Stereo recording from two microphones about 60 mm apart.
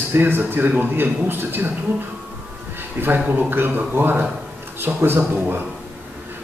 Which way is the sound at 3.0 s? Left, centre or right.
Right.